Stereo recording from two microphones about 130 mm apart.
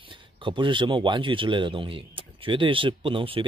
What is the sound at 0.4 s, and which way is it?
Speech, 40° right (ahead or behind).